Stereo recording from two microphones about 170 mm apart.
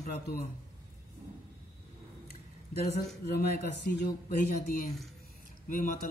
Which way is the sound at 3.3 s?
60° left (ahead or behind).